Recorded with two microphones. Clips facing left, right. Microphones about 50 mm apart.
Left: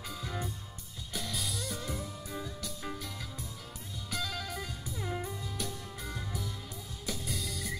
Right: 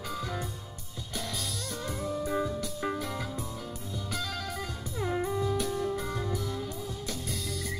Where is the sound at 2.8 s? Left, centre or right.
Right.